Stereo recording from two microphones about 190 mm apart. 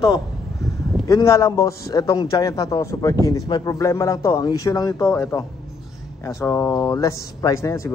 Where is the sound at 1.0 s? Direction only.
15° left (ahead or behind).